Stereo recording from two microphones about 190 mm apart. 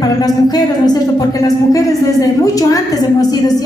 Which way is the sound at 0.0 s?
20° left (ahead or behind).